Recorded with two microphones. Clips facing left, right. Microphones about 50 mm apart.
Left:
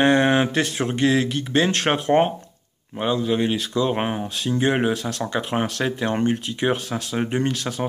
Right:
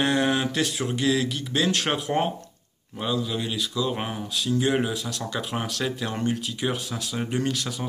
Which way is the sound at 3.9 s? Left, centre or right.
Left.